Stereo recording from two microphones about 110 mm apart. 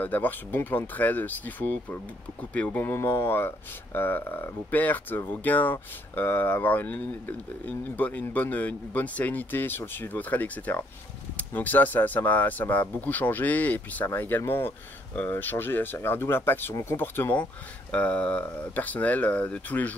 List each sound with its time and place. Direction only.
0.0 s speech: 15° left (ahead or behind)